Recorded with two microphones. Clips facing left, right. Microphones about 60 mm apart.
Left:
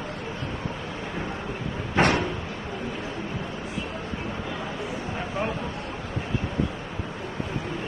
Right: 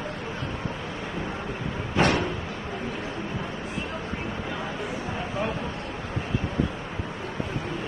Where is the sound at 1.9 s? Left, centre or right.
Left.